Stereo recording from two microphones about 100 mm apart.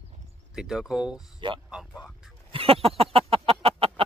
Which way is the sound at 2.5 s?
75° right (ahead or behind).